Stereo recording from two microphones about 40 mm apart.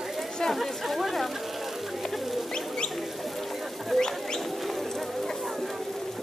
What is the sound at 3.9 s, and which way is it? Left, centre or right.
Bird, centre.